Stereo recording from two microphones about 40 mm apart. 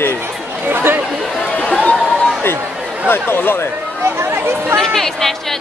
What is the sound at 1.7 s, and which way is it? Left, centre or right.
Chatter, left.